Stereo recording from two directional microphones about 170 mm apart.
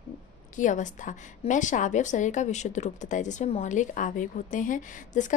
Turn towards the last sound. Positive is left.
turn(degrees=50)  # may be behind; listen again after turning